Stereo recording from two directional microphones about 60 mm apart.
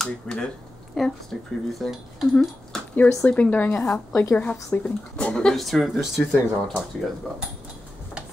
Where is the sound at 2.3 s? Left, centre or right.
Centre.